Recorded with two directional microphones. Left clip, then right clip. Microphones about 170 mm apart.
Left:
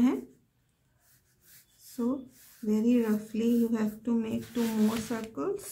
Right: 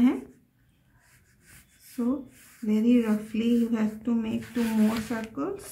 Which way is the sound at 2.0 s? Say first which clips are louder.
Right 3 dB; 10° left (ahead or behind).